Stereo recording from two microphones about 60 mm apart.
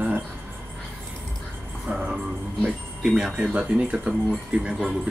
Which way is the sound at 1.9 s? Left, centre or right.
Centre.